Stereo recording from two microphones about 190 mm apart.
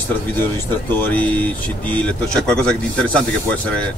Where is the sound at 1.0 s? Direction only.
10° left (ahead or behind).